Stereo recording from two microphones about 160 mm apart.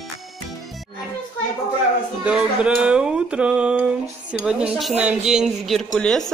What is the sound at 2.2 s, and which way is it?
Speech, 5° right (ahead or behind).